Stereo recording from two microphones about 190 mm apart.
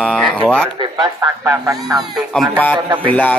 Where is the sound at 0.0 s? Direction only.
5° right (ahead or behind).